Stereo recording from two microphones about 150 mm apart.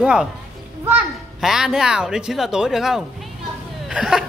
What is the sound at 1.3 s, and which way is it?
Speech, centre (ahead or behind).